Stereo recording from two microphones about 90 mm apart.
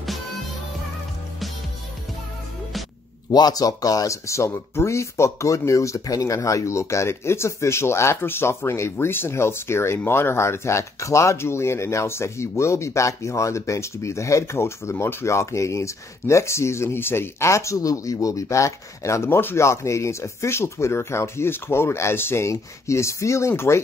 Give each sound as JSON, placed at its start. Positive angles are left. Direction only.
{"t": 3.3, "sound": "speech", "side_deg": 50}